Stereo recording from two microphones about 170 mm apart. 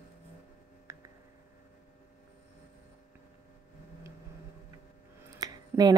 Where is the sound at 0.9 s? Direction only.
20° right (ahead or behind).